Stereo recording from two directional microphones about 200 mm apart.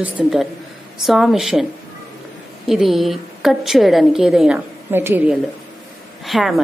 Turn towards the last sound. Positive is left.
turn(degrees=0)  # may be behind; listen again after turning